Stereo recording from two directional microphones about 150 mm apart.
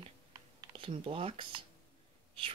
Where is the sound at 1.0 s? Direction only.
40° right (ahead or behind).